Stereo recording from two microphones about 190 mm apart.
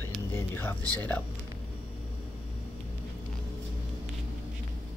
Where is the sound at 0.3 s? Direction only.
10° left (ahead or behind).